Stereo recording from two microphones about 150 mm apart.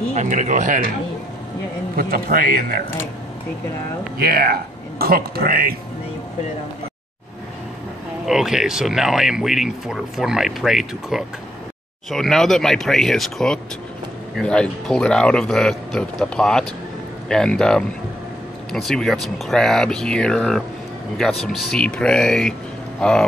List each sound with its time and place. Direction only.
0.1 s speech: 55° right (ahead or behind)
2.0 s a man's voice: 80° right
4.2 s speech: 85° right
8.3 s speech: 5° right (ahead or behind)